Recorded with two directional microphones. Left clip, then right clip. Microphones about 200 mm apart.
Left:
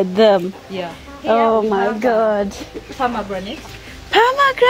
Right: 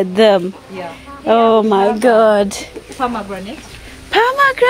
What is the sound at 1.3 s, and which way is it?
Speech, 15° right (ahead or behind).